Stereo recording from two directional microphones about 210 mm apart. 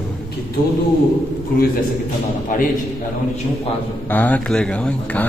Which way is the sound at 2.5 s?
40° left (ahead or behind).